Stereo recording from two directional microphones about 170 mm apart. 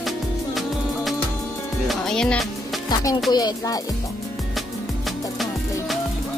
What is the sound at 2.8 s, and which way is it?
Music, 25° left (ahead or behind).